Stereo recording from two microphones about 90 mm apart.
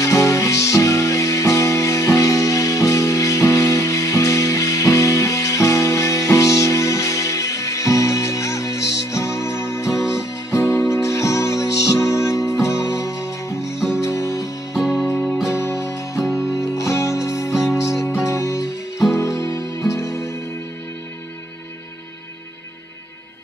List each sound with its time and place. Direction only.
0.0 s music: 35° left (ahead or behind)
14.7 s music: 5° right (ahead or behind)
15.5 s music: 30° left (ahead or behind)
16.2 s music: 5° right (ahead or behind)
16.6 s music: 35° left (ahead or behind)
17.6 s music: 5° right (ahead or behind)
18.0 s music: 30° left (ahead or behind)